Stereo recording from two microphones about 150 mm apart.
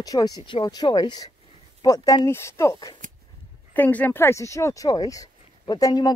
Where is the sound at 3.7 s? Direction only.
10° left (ahead or behind).